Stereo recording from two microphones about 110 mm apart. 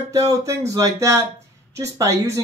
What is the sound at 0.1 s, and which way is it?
Speech, 30° right (ahead or behind).